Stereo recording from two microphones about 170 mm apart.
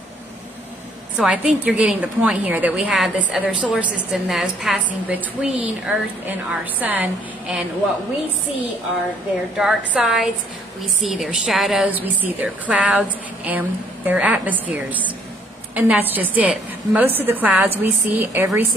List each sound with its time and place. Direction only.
1.1 s a woman's voice: 5° right (ahead or behind)
9.6 s a woman's voice: 5° right (ahead or behind)